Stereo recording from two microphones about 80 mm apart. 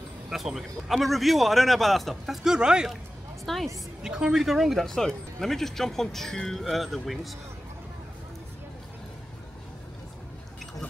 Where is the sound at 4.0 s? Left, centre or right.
Centre.